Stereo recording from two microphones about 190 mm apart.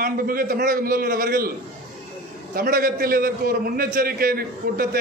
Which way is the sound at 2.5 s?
50° right (ahead or behind).